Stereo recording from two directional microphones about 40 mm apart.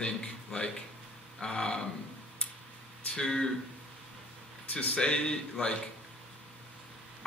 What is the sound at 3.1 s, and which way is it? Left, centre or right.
Speech, centre.